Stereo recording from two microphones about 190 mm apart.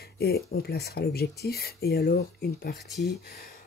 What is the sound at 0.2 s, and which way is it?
Speech, 55° left (ahead or behind).